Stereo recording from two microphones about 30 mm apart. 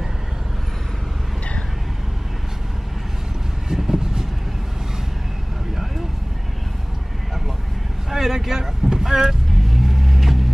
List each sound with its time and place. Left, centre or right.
3.6 s vehicle: centre
8.1 s vehicle: centre